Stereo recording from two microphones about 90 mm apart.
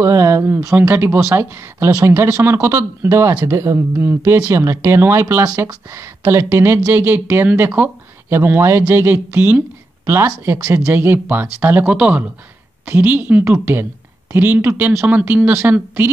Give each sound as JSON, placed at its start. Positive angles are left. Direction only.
{"t": 0.0, "sound": "speech", "side_deg": -35}
{"t": 0.7, "sound": "speech", "side_deg": -20}